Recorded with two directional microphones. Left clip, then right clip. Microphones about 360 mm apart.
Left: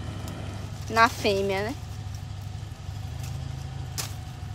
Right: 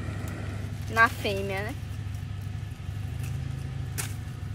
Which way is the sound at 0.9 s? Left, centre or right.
Left.